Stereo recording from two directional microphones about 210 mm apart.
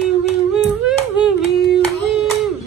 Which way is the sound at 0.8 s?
5° right (ahead or behind).